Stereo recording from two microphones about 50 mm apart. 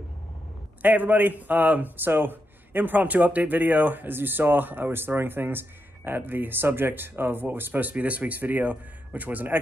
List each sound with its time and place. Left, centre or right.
0.8 s a man's voice: right
7.9 s a man's voice: right